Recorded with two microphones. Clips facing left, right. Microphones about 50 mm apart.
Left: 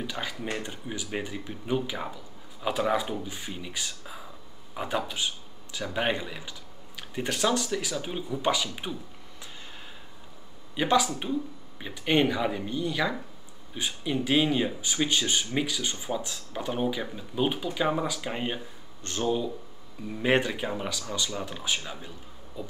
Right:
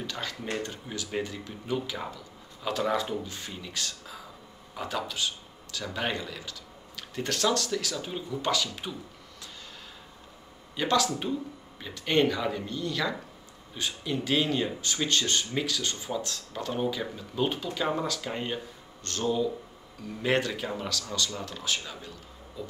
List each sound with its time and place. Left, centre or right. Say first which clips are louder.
0.0 s speech: left 2 dB; centre
10.8 s speech: left 2 dB; centre